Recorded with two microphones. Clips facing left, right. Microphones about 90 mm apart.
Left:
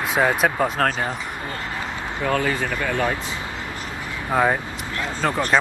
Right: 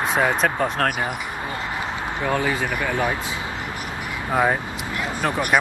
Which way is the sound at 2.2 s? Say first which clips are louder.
Left 1 dB; 10° right (ahead or behind).